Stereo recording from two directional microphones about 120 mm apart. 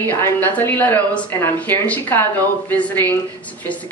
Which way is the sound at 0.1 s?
15° left (ahead or behind).